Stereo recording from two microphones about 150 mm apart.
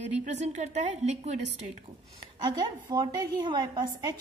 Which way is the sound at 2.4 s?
30° right (ahead or behind).